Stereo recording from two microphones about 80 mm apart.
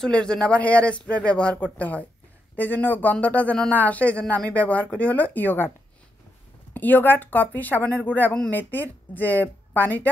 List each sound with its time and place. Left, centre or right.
0.0 s speech: centre
6.7 s speech: left